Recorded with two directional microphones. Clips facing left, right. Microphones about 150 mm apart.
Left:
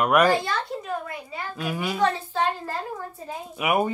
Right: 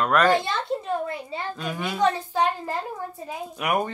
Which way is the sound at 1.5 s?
5° left (ahead or behind).